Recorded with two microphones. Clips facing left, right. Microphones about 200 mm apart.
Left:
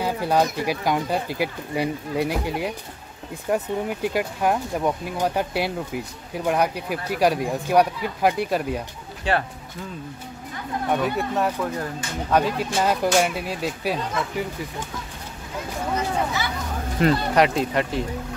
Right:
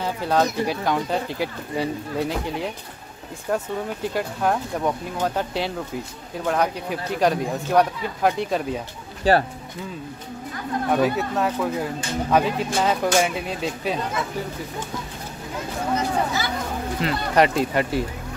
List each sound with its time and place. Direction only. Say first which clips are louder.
0.0 s speech: even; 10° left (ahead or behind)
9.3 s speech: right 5 dB; 35° right (ahead or behind)
10.9 s speech: right 2 dB; centre (ahead or behind)
17.0 s speech: left 7 dB; 55° left (ahead or behind)
17.4 s speech: right 5 dB; centre (ahead or behind)